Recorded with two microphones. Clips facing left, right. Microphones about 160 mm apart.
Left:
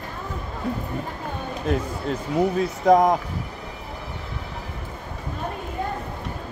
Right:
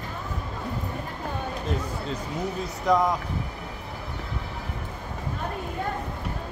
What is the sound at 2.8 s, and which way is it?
Speech, 50° left (ahead or behind).